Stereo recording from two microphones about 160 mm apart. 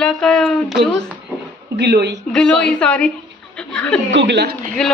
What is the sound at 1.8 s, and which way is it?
Speech, 90° right.